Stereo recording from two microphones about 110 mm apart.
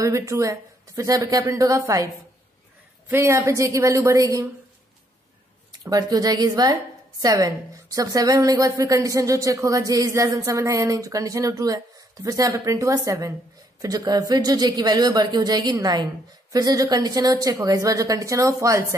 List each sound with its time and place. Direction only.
0.0 s a woman's voice: 30° right (ahead or behind)
3.1 s a woman's voice: 25° right (ahead or behind)
5.9 s a woman's voice: 35° right (ahead or behind)